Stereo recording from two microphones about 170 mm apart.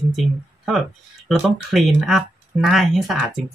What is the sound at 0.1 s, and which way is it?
Speech, centre (ahead or behind).